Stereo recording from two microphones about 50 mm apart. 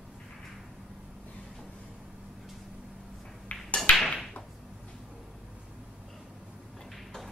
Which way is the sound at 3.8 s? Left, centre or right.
Centre.